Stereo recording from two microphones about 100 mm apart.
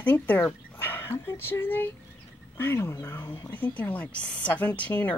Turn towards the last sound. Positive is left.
turn(degrees=15)  # may be behind; listen again after turning